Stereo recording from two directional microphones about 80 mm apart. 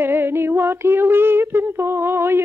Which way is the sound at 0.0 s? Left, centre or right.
Right.